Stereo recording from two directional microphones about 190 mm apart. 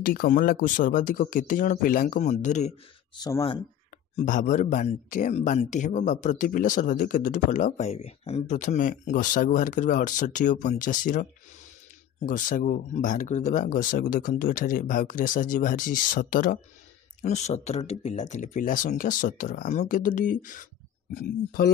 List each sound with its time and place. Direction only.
0.0 s speech: 50° left (ahead or behind)
3.2 s speech: 15° left (ahead or behind)
4.2 s speech: 40° left (ahead or behind)